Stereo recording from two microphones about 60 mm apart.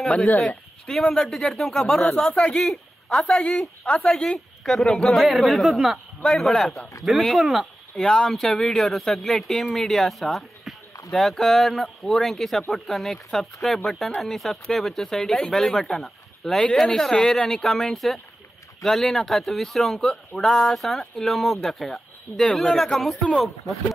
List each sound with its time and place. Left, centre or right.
0.0 s speech: centre
2.7 s a sound: centre
3.3 s speech: centre
4.6 s speech: centre